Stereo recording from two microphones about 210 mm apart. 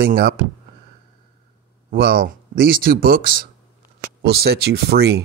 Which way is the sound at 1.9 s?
45° right (ahead or behind).